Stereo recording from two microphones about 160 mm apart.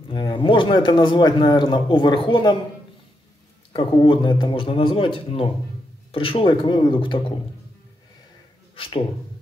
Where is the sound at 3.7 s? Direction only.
30° left (ahead or behind).